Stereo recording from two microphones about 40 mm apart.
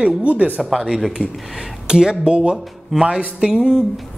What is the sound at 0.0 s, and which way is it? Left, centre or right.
Speech, right.